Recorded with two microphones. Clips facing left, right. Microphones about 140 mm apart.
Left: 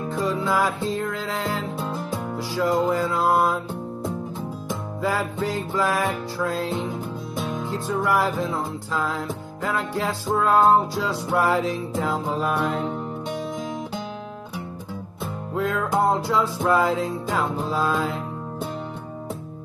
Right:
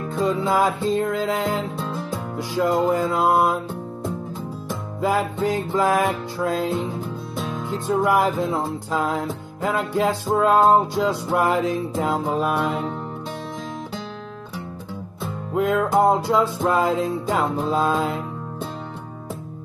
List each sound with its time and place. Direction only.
0.2 s music: 25° right (ahead or behind)
5.0 s music: 20° right (ahead or behind)
7.9 s music: 20° right (ahead or behind)
12.5 s music: 5° right (ahead or behind)
15.5 s music: 20° right (ahead or behind)